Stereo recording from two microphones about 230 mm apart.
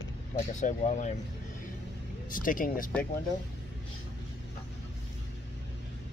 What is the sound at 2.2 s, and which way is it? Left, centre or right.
Speech, left.